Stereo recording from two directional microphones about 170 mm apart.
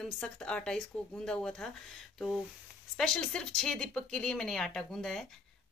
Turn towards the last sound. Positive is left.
turn(degrees=0)  # may be behind; listen again after turning